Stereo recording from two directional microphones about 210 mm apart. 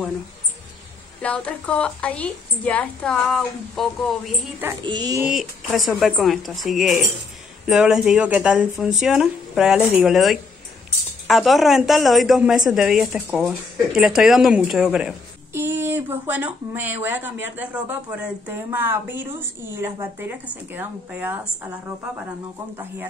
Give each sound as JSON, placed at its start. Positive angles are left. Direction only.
{"t": 1.2, "sound": "a woman's voice", "side_deg": 5}
{"t": 4.8, "sound": "speech", "side_deg": -20}
{"t": 5.2, "sound": "a woman's voice", "side_deg": 0}